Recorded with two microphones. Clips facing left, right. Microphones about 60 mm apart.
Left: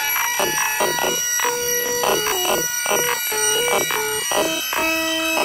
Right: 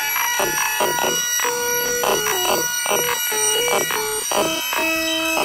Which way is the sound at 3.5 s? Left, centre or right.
Centre.